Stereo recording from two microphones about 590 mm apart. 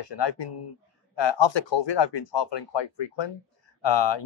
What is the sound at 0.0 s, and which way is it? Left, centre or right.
Speech, left.